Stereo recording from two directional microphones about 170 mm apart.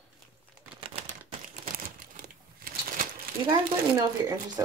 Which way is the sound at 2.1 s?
60° right (ahead or behind).